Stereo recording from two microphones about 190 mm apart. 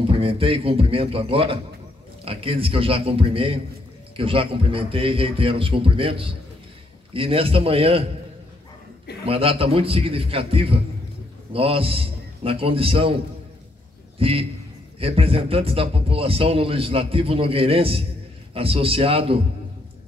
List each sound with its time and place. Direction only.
0.0 s a man's voice: 30° right (ahead or behind)
9.2 s a man's voice: 30° right (ahead or behind)
14.1 s a man's voice: 30° right (ahead or behind)